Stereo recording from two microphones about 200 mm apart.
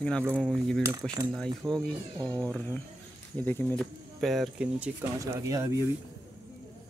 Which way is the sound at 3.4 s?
5° left (ahead or behind).